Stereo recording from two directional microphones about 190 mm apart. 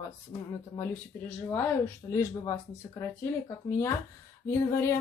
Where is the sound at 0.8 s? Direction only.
10° left (ahead or behind).